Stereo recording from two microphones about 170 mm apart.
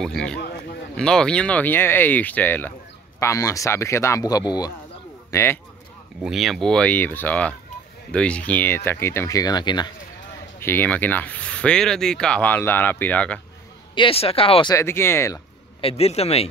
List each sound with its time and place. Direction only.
0.0 s speech: 5° left (ahead or behind)
6.2 s speech: centre (ahead or behind); by 9.9 s 25° left (ahead or behind)
10.6 s speech: 10° left (ahead or behind)
13.9 s speech: 35° left (ahead or behind)
14.8 s speech: 15° left (ahead or behind)
15.8 s speech: 35° left (ahead or behind)